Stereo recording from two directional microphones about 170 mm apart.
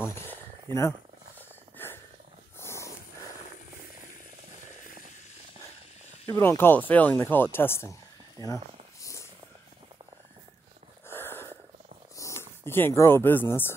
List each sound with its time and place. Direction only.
0.0 s speech: 15° left (ahead or behind)
1.8 s snort: 10° left (ahead or behind)
2.6 s dog: 15° left (ahead or behind)
6.2 s speech: 20° left (ahead or behind)
9.0 s a sound: 15° left (ahead or behind)
11.1 s a sound: 15° left (ahead or behind)
12.2 s speech: 15° left (ahead or behind)